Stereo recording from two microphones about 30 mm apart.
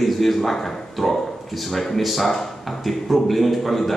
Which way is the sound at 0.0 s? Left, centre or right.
Centre.